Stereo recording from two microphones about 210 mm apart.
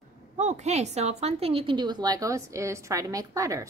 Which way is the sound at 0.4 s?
35° right (ahead or behind).